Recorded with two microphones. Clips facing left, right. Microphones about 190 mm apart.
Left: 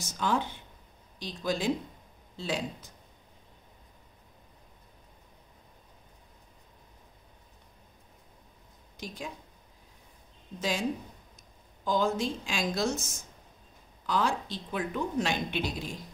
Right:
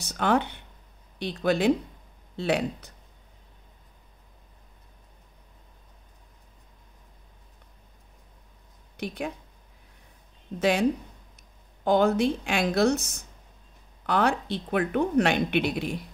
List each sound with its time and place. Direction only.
0.0 s a woman's voice: 65° right (ahead or behind)
8.9 s speech: 65° right (ahead or behind)
10.6 s a woman's voice: 65° right (ahead or behind)